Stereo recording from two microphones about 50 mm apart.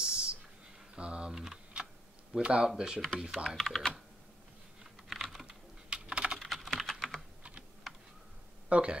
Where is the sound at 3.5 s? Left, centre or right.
Centre.